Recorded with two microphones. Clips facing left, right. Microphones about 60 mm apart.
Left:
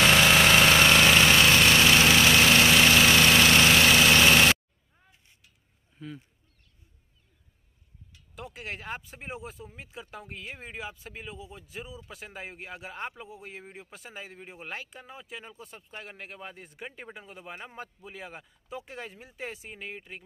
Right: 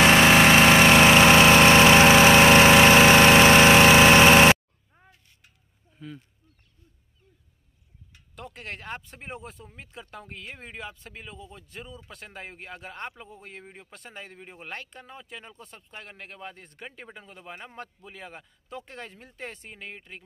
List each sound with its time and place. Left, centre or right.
0.0 s engine: right
5.9 s speech: centre
8.4 s speech: centre